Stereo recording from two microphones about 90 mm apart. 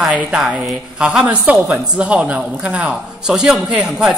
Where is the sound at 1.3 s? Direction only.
15° right (ahead or behind).